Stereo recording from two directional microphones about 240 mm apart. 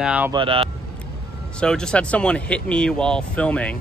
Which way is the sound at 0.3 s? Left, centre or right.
Right.